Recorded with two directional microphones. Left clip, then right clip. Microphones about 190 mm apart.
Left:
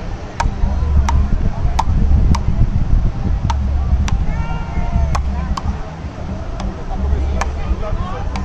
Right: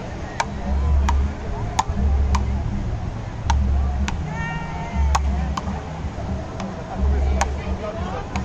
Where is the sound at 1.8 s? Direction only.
15° right (ahead or behind).